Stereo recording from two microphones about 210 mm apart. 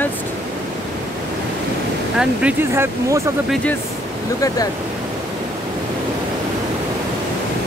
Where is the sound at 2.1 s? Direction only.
10° right (ahead or behind).